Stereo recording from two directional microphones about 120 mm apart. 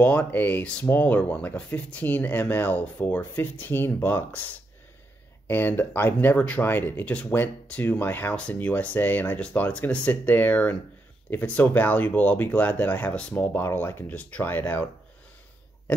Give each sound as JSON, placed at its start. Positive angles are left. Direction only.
{"t": 0.0, "sound": "speech", "side_deg": 15}
{"t": 5.5, "sound": "speech", "side_deg": 15}